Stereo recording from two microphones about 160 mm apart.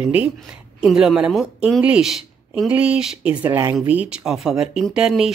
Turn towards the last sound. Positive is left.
turn(degrees=-5)  # may be behind; listen again after turning